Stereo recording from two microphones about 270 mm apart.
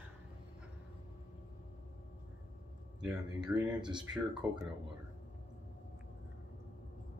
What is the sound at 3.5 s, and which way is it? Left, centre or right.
Speech, centre.